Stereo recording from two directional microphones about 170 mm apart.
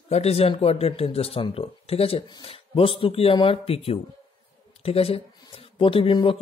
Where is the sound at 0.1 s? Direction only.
40° left (ahead or behind).